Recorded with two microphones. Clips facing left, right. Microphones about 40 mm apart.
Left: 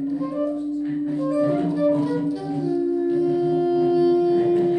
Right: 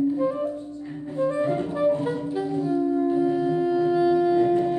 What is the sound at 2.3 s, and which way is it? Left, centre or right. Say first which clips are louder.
Saxophone: left 1 dB; right.